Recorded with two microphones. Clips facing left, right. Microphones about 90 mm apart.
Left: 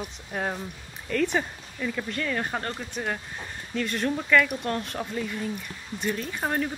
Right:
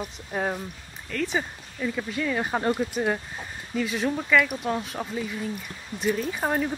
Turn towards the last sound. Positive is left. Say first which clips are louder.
# right 2 dB
turn(degrees=-5)  # may be behind; listen again after turning